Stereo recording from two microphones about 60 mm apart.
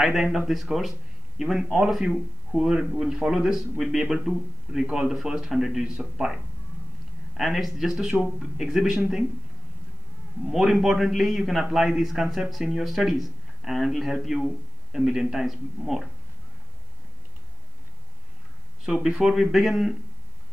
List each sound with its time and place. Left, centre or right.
0.0 s speech: centre
4.7 s a man's voice: right
5.1 s speech: centre
10.5 s speech: centre
19.0 s speech: centre